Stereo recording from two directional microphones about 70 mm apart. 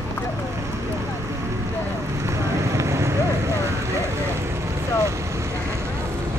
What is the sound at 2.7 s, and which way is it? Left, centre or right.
Vehicle, right.